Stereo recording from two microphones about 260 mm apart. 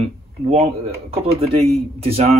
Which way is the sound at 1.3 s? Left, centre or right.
Right.